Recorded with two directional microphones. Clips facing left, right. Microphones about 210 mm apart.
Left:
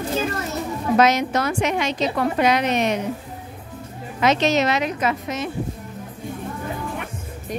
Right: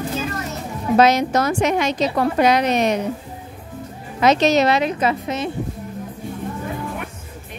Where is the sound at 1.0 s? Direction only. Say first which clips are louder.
Right 3 dB; 35° right (ahead or behind).